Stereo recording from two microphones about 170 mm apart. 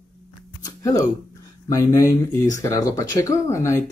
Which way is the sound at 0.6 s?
20° left (ahead or behind).